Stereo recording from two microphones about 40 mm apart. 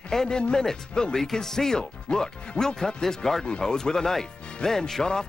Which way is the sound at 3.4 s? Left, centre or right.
Left.